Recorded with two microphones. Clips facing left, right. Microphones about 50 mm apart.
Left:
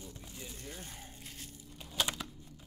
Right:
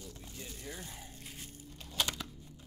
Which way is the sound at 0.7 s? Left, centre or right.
Right.